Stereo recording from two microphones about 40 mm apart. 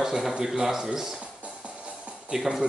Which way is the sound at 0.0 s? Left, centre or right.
Centre.